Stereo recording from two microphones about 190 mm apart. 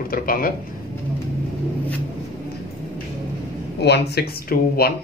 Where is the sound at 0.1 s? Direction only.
50° left (ahead or behind).